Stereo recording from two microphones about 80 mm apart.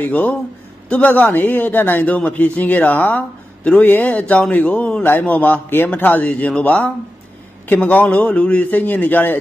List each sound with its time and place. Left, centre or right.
0.0 s a man's voice: centre